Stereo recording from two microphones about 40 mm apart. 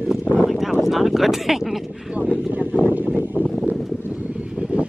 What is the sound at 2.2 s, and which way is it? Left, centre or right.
Speech, right.